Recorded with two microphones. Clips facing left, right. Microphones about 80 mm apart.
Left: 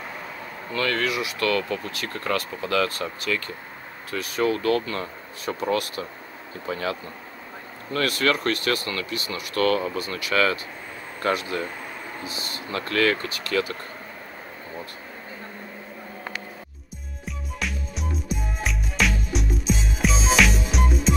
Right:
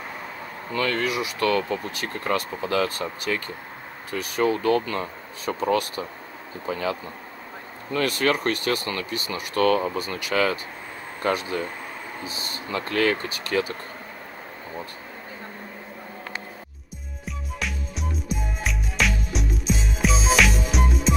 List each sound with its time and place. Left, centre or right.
0.7 s speech: right
7.9 s speech: right
17.3 s music: centre